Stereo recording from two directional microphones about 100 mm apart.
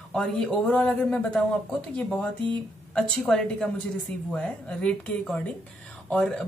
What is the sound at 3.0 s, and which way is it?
Speech, 5° left (ahead or behind).